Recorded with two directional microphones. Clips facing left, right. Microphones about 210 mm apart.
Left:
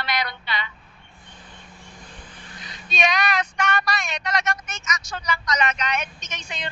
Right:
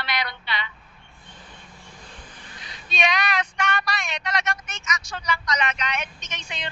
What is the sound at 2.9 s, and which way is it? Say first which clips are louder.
Speech: left 2 dB; 45° left (ahead or behind).